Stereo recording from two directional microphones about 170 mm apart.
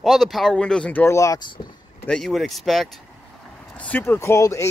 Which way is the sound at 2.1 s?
5° left (ahead or behind).